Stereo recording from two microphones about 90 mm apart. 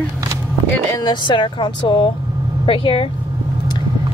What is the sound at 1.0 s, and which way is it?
Speech, 60° left (ahead or behind).